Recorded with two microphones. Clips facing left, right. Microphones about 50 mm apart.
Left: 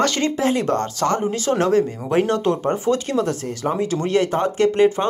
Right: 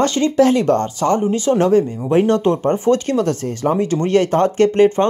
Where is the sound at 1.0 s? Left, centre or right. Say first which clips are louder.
Right 4 dB; right.